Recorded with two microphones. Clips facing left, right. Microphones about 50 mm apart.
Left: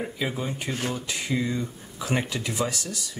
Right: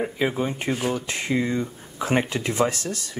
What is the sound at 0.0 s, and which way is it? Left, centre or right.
Speech, right.